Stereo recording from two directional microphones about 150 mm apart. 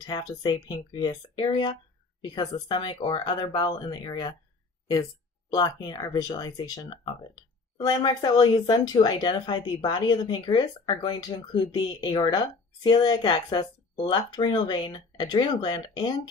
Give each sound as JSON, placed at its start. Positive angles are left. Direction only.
{"t": 0.0, "sound": "speech", "side_deg": 30}
{"t": 5.5, "sound": "speech", "side_deg": 25}